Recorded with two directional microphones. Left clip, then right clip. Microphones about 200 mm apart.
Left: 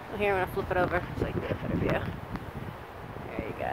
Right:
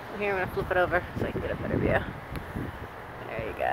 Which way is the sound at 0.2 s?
35° left (ahead or behind).